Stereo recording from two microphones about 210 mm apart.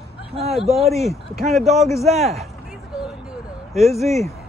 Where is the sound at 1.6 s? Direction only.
30° right (ahead or behind).